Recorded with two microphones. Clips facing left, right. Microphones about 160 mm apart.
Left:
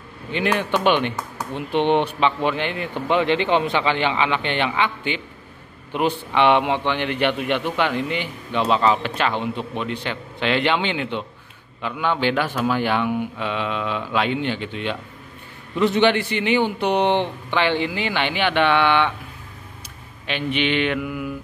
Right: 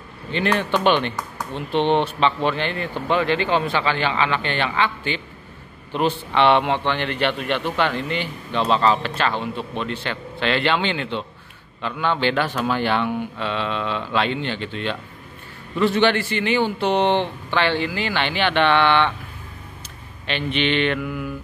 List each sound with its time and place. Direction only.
0.3 s a man's voice: 10° left (ahead or behind)
20.2 s a man's voice: 10° left (ahead or behind)